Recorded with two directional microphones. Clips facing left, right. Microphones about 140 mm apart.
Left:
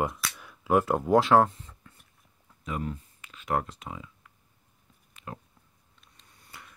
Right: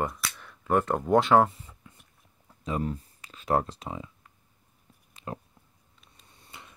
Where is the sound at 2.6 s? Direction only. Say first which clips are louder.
Right 3 dB; 35° right (ahead or behind).